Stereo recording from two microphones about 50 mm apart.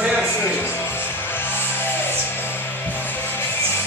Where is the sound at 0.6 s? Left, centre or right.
Left.